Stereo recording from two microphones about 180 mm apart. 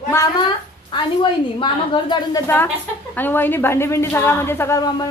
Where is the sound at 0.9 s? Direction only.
25° left (ahead or behind).